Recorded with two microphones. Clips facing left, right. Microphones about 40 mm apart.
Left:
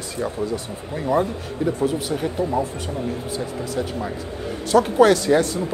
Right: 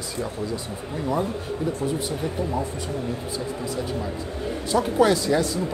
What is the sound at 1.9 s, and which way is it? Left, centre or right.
Speech, left.